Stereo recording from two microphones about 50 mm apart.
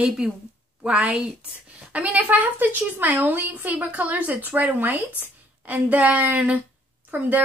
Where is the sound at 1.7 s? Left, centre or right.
Right.